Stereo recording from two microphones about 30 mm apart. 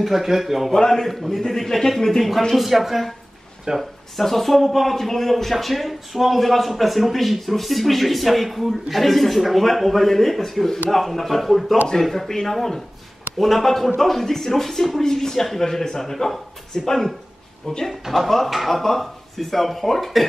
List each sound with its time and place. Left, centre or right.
0.0 s a man's voice: centre
1.0 s speech: centre
3.7 s speech: right
4.2 s speech: centre
17.6 s speech: left
18.0 s speech: centre